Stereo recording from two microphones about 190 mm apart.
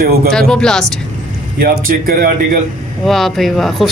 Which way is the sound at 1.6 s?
50° right (ahead or behind).